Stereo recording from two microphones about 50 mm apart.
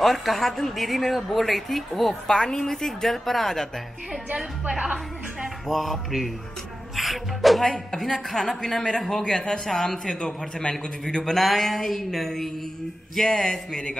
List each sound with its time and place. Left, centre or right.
0.0 s a woman's voice: centre
4.6 s a woman's voice: centre
5.7 s a woman's voice: centre
11.3 s a woman's voice: centre